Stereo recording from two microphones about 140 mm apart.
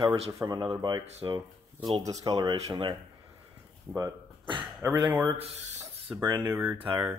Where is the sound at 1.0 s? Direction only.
50° right (ahead or behind).